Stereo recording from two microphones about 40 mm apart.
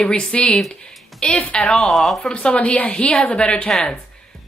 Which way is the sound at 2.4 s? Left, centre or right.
Left.